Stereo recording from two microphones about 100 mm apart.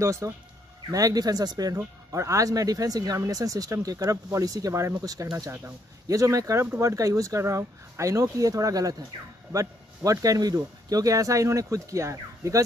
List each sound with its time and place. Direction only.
0.0 s speech: 30° right (ahead or behind)